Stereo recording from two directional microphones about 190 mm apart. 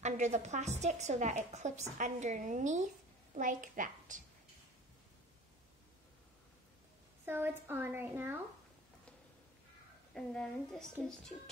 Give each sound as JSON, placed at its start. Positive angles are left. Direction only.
{"t": 0.0, "sound": "a woman's voice", "side_deg": -35}
{"t": 7.2, "sound": "a woman's voice", "side_deg": -10}
{"t": 10.1, "sound": "a woman's voice", "side_deg": 5}